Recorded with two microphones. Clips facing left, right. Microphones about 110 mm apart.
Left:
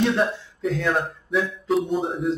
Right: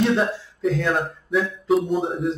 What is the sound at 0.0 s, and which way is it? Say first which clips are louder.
Speech: right 1 dB; centre (ahead or behind).